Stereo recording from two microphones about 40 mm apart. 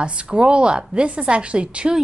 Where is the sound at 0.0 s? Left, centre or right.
Right.